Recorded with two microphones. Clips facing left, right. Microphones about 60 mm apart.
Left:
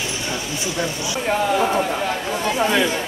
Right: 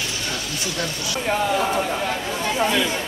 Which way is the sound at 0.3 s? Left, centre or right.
Left.